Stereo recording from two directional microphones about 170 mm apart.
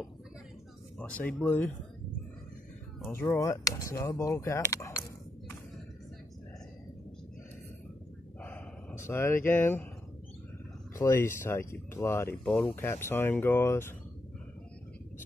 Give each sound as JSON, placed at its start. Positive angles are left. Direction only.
{"t": 0.9, "sound": "speech", "side_deg": 10}
{"t": 3.1, "sound": "speech", "side_deg": 15}
{"t": 8.4, "sound": "dog", "side_deg": 10}
{"t": 11.0, "sound": "speech", "side_deg": 15}